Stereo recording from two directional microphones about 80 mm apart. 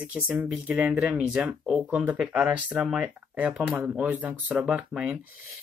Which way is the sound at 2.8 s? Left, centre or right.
Centre.